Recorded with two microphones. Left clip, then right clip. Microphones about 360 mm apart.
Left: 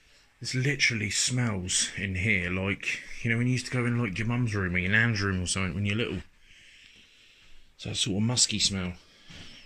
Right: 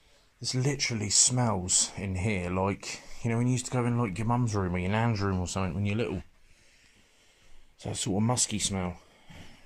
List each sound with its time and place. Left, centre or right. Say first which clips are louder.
0.5 s speech: left 4 dB; centre
7.8 s speech: left 2 dB; centre
8.7 s a sound: right 2 dB; centre